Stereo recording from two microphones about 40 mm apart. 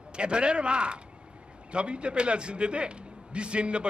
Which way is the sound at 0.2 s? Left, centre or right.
Right.